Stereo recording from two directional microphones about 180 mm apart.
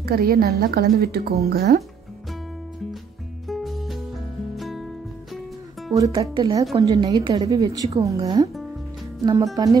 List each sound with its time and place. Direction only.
0.0 s speech: 55° right (ahead or behind)
3.4 s music: centre (ahead or behind)
5.9 s a woman's voice: 20° right (ahead or behind)
6.3 s a woman's voice: 30° right (ahead or behind)
6.7 s a woman's voice: 20° right (ahead or behind)